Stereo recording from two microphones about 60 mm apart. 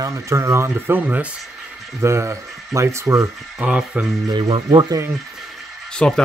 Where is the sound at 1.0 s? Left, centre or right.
Right.